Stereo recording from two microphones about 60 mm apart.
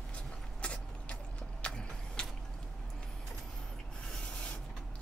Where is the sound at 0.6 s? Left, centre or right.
Centre.